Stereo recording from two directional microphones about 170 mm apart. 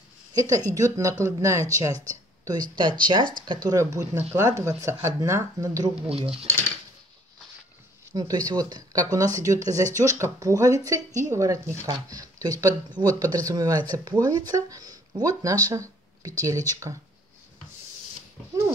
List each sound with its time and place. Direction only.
0.3 s a woman's voice: 20° right (ahead or behind)
6.0 s speech: 35° right (ahead or behind)
8.1 s speech: 25° right (ahead or behind)